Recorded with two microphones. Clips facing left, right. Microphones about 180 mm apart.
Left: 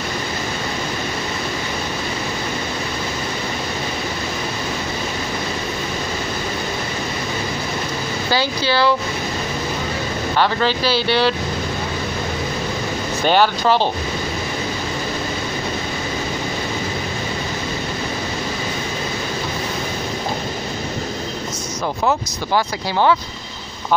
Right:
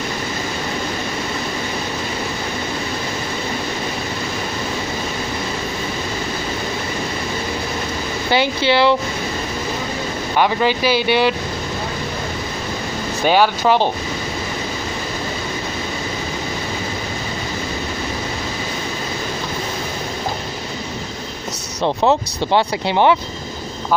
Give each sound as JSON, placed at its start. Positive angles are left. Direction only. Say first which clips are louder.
{"t": 8.3, "sound": "speech", "louder": "right 4 dB", "side_deg": -20}
{"t": 10.3, "sound": "speech", "louder": "right 2 dB", "side_deg": -15}
{"t": 13.3, "sound": "speech", "louder": "right 1 dB", "side_deg": -10}
{"t": 21.8, "sound": "speech", "louder": "right 4 dB", "side_deg": -25}